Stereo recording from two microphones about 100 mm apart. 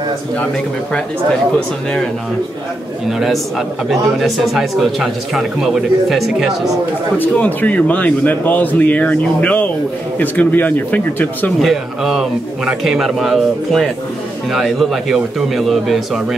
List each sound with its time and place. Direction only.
3.1 s speech: 5° right (ahead or behind)
7.2 s a man's voice: 15° left (ahead or behind)
11.6 s speech: centre (ahead or behind)